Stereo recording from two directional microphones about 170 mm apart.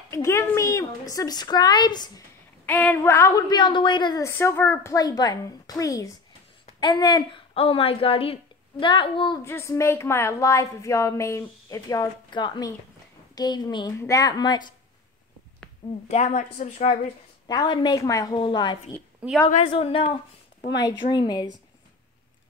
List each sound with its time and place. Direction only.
0.1 s a woman's voice: 15° left (ahead or behind)
2.6 s a woman's voice: 10° left (ahead or behind); by 9.4 s 30° left (ahead or behind)
9.4 s a woman's voice: 15° left (ahead or behind)
16.1 s speech: 40° left (ahead or behind)
17.5 s a woman's voice: 25° left (ahead or behind)
19.2 s a woman's voice: 5° right (ahead or behind)
19.7 s a woman's voice: 30° left (ahead or behind)